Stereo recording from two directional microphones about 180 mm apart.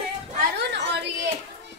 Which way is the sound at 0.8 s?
75° right (ahead or behind).